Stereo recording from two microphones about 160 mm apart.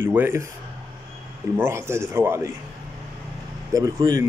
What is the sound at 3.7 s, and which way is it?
Speech, 25° right (ahead or behind).